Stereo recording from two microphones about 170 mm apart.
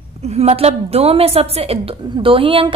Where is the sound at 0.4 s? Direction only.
35° right (ahead or behind).